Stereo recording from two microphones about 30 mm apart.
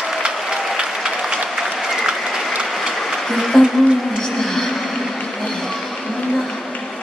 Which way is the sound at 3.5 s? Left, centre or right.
Centre.